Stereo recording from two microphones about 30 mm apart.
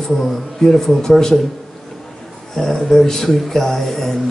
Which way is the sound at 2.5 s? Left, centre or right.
Centre.